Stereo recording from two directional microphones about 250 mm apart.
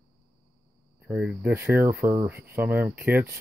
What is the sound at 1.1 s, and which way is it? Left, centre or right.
Speech, centre.